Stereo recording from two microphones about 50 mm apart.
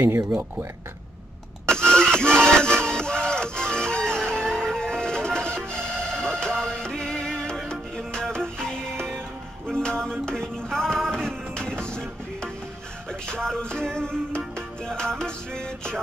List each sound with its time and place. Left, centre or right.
2.0 s music: centre